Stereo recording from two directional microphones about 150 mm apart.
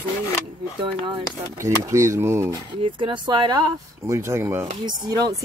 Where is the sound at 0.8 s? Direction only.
35° right (ahead or behind).